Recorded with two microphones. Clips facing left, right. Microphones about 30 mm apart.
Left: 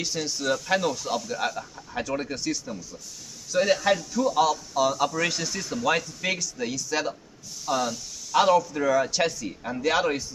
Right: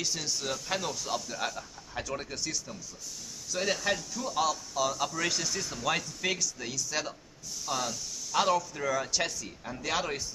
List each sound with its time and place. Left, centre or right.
0.0 s a man's voice: centre
7.6 s a sound: centre
8.4 s a man's voice: centre